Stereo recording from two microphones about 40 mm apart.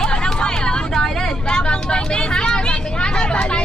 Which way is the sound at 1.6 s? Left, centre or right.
Left.